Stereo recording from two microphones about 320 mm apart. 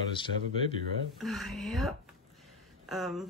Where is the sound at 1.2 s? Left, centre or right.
Centre.